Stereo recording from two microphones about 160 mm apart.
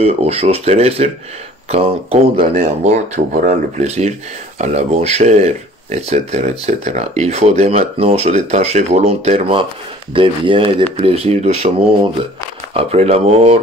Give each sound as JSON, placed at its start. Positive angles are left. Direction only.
{"t": 0.0, "sound": "speech", "side_deg": -40}
{"t": 12.7, "sound": "speech", "side_deg": -40}